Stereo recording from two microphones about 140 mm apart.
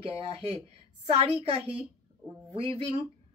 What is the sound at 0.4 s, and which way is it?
A woman's voice, 50° right (ahead or behind).